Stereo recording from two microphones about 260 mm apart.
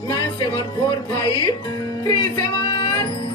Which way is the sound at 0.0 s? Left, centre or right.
Centre.